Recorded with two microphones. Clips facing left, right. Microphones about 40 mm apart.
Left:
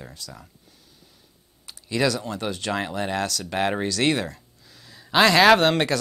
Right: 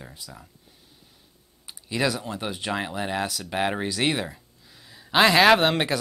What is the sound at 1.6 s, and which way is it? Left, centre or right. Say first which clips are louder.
Speech: left 2 dB; centre.